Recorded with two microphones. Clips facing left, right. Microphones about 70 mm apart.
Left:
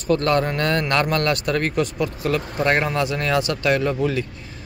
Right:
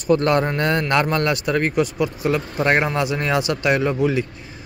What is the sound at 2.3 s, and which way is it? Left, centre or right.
A man's voice, right.